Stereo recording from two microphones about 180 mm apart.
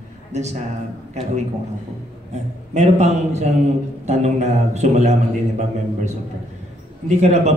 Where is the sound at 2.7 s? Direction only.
40° right (ahead or behind).